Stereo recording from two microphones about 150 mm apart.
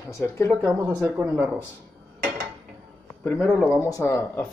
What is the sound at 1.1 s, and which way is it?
Speech, 15° right (ahead or behind).